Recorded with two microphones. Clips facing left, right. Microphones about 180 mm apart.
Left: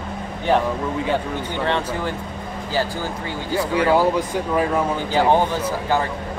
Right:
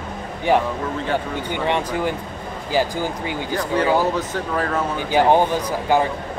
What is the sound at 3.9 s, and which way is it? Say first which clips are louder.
Speech: left 2 dB; 10° left (ahead or behind).